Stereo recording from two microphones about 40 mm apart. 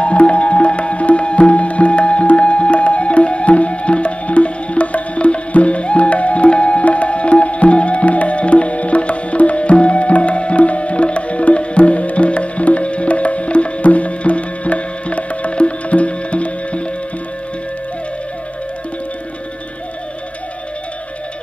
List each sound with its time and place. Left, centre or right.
0.0 s music: left